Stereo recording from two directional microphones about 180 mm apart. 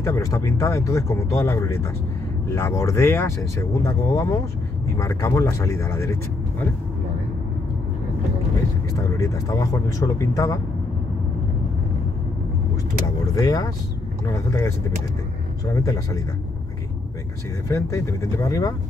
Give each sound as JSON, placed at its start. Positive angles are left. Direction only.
{"t": 0.0, "sound": "speech", "side_deg": 15}
{"t": 8.9, "sound": "speech", "side_deg": 20}
{"t": 13.3, "sound": "speech", "side_deg": 20}
{"t": 15.7, "sound": "speech", "side_deg": 20}
{"t": 17.6, "sound": "speech", "side_deg": 15}